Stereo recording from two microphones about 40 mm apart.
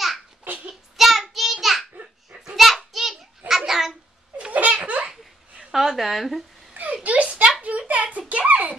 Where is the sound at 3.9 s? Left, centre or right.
Right.